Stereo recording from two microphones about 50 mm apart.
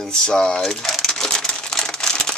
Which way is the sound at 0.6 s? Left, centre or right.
Centre.